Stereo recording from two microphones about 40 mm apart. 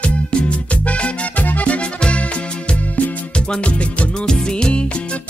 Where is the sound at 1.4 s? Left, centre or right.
Left.